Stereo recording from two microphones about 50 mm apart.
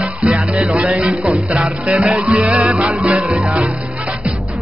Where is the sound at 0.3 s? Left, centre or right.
Right.